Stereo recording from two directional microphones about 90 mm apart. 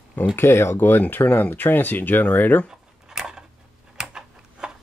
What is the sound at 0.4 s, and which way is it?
Speech, 30° left (ahead or behind).